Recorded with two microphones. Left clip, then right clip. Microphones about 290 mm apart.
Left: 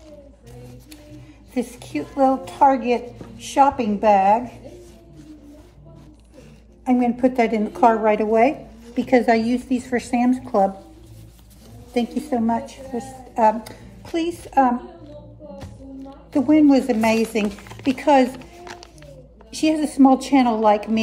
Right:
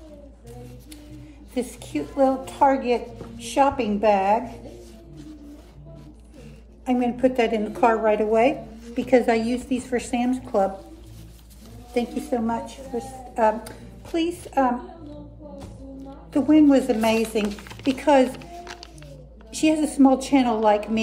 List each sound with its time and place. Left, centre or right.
1.5 s a woman's voice: left
6.8 s a woman's voice: left
11.9 s a woman's voice: left
16.3 s a woman's voice: left